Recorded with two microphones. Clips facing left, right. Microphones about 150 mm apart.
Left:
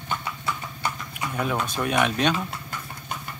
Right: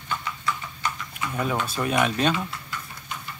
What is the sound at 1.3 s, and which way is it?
Speech, centre (ahead or behind).